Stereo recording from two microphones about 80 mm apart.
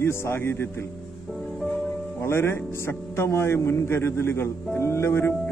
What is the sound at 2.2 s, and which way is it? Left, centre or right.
A man's voice, left.